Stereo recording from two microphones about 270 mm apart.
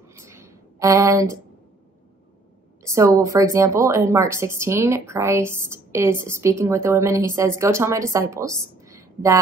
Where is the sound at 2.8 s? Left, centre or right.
Centre.